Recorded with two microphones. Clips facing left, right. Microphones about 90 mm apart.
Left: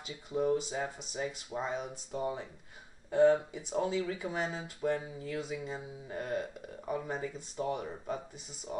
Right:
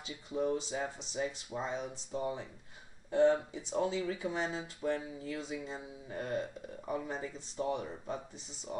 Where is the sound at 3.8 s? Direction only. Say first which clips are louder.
Left 1 dB; 35° left (ahead or behind).